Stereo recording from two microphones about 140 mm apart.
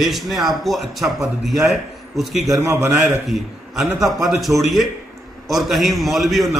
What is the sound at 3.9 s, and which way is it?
Speech, 20° right (ahead or behind).